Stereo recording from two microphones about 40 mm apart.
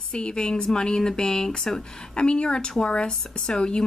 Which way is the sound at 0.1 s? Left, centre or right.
Left.